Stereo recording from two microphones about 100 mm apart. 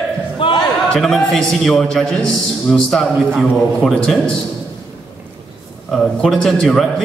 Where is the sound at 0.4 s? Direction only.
60° left (ahead or behind).